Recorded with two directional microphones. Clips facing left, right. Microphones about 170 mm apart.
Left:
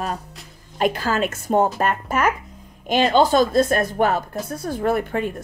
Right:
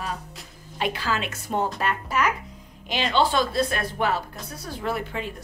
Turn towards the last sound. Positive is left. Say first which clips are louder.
# left 8 dB
turn(degrees=50)  # may be behind; listen again after turning